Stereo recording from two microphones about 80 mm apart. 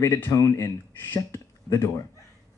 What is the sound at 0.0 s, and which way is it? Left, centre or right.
Speech, left.